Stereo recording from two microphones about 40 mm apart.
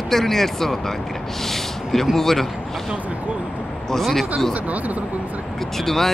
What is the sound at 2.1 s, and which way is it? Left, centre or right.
Speech, centre.